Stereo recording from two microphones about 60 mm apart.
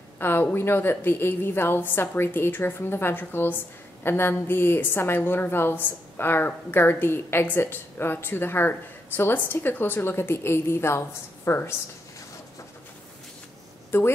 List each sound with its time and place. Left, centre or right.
0.2 s speech: left
13.9 s speech: left